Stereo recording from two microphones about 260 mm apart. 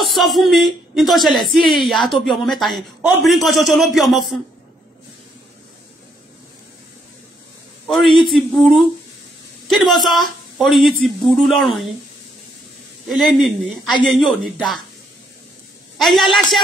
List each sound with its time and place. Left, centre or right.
0.0 s speech: centre
7.8 s speech: centre
13.1 s speech: centre
16.0 s speech: centre